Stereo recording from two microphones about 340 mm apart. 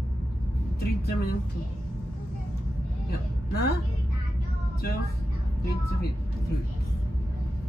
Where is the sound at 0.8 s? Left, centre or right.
Left.